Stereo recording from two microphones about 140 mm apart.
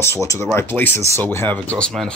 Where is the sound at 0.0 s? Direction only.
20° left (ahead or behind).